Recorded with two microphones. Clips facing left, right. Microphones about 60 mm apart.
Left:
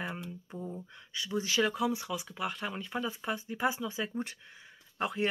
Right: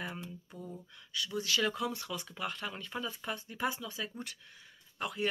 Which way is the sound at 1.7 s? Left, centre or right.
Centre.